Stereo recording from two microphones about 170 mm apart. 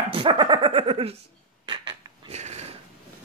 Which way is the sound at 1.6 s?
30° right (ahead or behind).